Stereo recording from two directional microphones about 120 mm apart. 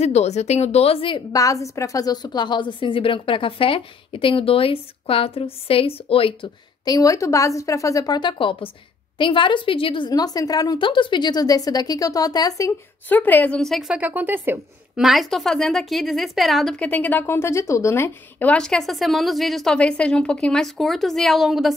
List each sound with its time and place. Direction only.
0.0 s speech: 65° left (ahead or behind); by 1.2 s 50° left (ahead or behind)
1.3 s a woman's voice: 30° left (ahead or behind); by 6.5 s 50° left (ahead or behind)
6.8 s a woman's voice: 30° left (ahead or behind)
13.1 s a woman's voice: 15° left (ahead or behind); by 14.6 s 15° right (ahead or behind)
15.0 s a woman's voice: centre (ahead or behind)